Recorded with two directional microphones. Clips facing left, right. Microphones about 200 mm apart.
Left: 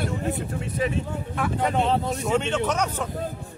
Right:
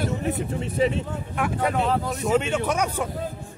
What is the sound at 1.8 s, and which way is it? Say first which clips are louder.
Speech: left 1 dB; 25° left (ahead or behind).